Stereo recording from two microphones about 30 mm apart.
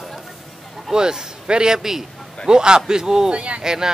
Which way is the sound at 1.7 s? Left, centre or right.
Centre.